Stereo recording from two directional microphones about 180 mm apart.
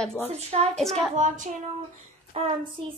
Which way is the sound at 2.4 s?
40° right (ahead or behind).